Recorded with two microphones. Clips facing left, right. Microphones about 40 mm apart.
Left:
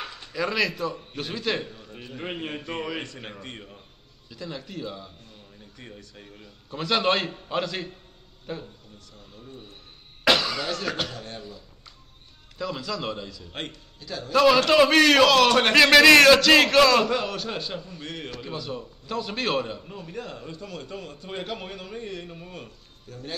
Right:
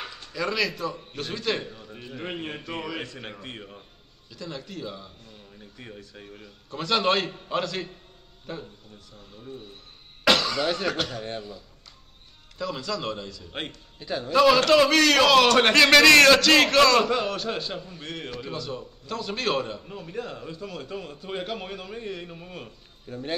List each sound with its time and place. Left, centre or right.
0.0 s a man's voice: centre
4.3 s a man's voice: centre
6.7 s a man's voice: centre
10.2 s cough: centre
10.9 s a man's voice: centre
12.5 s a man's voice: centre
13.5 s speech: centre
13.9 s a man's voice: right
14.3 s a man's voice: centre
15.2 s a man's voice: centre
23.0 s speech: right